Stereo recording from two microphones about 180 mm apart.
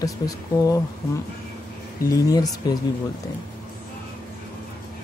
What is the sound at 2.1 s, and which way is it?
Speech, 20° left (ahead or behind).